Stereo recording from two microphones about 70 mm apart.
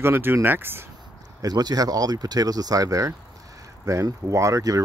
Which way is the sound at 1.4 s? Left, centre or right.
Right.